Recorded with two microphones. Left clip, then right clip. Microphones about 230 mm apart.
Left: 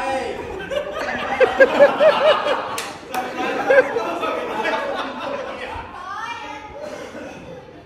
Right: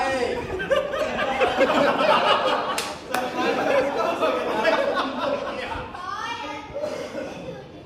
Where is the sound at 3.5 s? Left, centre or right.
Centre.